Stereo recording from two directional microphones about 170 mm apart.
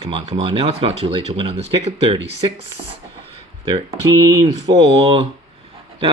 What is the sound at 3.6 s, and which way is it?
Speech, 25° right (ahead or behind).